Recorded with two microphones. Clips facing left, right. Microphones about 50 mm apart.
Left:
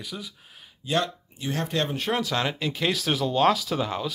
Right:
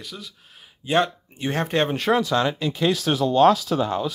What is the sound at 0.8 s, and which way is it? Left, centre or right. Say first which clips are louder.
Speech: right 5 dB; right.